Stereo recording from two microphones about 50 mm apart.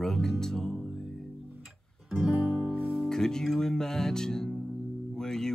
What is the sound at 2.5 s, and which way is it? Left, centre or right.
Music, right.